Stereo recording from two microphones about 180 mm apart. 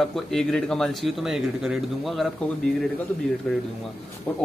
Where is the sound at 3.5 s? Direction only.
Centre (ahead or behind).